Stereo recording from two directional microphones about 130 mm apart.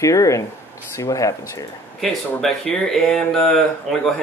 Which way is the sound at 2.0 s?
Centre (ahead or behind).